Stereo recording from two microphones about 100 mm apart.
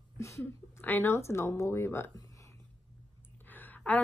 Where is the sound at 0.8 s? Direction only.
20° left (ahead or behind).